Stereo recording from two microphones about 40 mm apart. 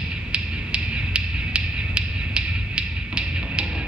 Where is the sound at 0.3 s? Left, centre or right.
Right.